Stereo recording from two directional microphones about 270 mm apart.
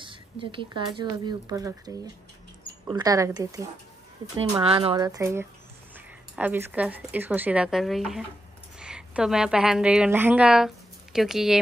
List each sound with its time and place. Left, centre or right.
0.0 s speech: centre
2.9 s a woman's voice: centre